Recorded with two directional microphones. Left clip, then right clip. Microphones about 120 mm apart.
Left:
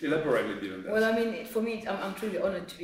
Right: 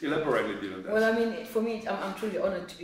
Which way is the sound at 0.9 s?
10° right (ahead or behind).